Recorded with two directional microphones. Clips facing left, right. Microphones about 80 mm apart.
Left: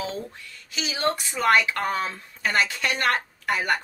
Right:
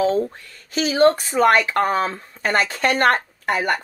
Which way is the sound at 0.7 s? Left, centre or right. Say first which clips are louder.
Right 11 dB; right.